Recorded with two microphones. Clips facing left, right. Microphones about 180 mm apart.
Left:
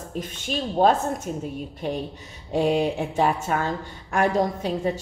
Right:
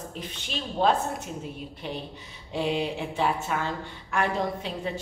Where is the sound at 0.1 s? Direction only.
45° left (ahead or behind).